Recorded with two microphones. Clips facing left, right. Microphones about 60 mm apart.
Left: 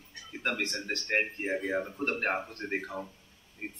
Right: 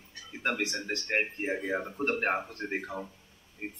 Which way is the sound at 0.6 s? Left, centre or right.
Centre.